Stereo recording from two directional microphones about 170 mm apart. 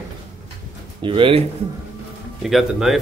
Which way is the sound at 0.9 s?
30° right (ahead or behind).